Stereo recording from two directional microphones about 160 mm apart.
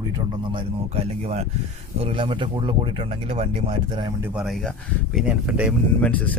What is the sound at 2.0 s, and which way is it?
Speech, 35° right (ahead or behind).